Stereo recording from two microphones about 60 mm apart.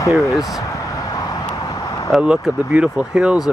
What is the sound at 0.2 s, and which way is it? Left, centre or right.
Speech, left.